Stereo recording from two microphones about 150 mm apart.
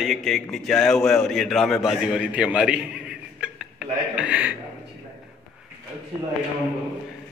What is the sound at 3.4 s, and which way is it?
Chuckle, 5° right (ahead or behind).